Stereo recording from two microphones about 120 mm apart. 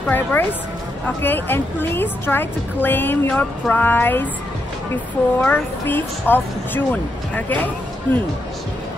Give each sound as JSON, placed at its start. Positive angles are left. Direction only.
{"t": 0.1, "sound": "a woman's voice", "side_deg": 15}
{"t": 5.4, "sound": "a woman's voice", "side_deg": 15}